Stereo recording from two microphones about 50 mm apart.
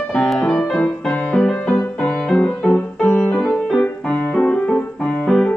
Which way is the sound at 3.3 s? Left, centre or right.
Left.